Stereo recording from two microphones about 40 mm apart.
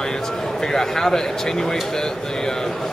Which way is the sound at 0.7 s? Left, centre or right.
Centre.